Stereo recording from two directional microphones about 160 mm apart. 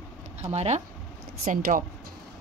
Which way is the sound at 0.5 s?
40° right (ahead or behind).